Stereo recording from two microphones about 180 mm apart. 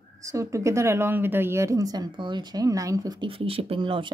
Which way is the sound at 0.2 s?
15° right (ahead or behind).